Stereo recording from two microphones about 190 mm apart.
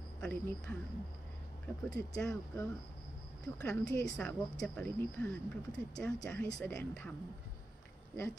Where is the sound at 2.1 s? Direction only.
5° left (ahead or behind).